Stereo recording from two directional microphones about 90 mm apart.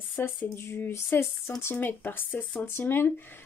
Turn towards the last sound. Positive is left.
turn(degrees=25)  # may be behind; listen again after turning